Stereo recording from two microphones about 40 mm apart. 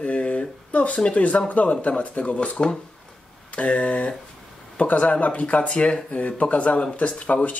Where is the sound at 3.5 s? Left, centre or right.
Left.